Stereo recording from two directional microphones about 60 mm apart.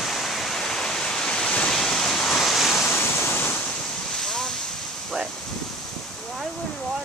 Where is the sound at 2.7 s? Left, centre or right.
Left.